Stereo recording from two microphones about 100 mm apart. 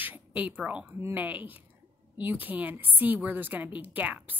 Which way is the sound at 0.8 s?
20° right (ahead or behind).